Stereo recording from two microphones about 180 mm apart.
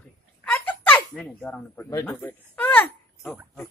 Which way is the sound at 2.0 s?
10° left (ahead or behind).